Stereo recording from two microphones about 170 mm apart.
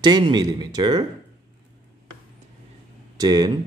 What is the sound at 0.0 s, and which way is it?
Speech, 25° right (ahead or behind).